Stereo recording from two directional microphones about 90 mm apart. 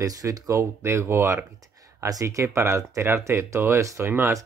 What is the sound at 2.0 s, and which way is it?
Speech, 35° right (ahead or behind).